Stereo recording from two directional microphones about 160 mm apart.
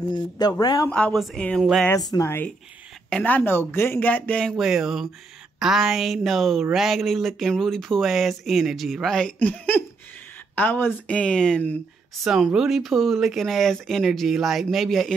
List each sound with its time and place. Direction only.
0.1 s speech: 25° left (ahead or behind)
0.8 s speech: 5° left (ahead or behind)
1.9 s speech: 20° left (ahead or behind); by 15.1 s centre (ahead or behind)